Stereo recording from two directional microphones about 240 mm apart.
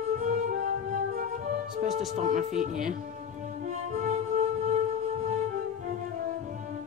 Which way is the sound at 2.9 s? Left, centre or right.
Right.